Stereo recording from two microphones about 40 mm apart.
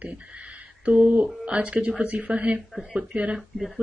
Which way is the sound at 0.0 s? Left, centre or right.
Right.